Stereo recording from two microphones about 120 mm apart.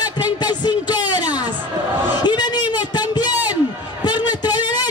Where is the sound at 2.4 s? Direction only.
35° left (ahead or behind).